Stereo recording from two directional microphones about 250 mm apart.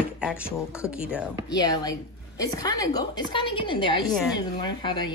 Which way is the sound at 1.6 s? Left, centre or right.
Centre.